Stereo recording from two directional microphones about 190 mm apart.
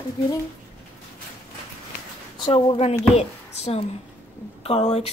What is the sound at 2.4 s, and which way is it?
A woman's voice, 30° left (ahead or behind).